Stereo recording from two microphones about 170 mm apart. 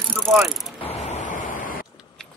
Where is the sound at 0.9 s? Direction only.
45° left (ahead or behind).